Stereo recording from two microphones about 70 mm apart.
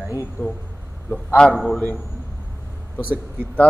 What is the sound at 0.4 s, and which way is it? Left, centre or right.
A man's voice, left.